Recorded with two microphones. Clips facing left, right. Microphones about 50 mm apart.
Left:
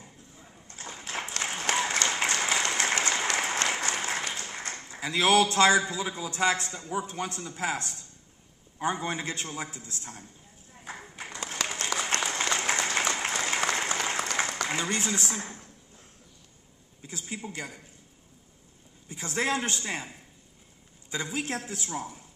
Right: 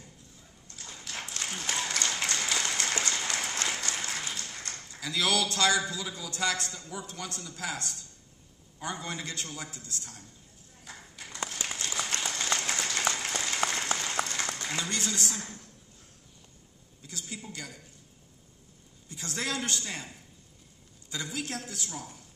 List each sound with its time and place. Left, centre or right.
0.0 s a sound: left
1.4 s applause: left
2.0 s a sound: left
3.6 s applause: left
4.3 s a man's voice: left
10.8 s clip-clop: left
11.6 s applause: left
12.2 s applause: left
14.7 s a man's voice: left
17.0 s a man's voice: left
19.0 s a man's voice: left